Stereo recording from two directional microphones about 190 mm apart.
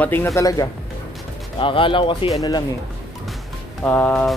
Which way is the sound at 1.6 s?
25° left (ahead or behind).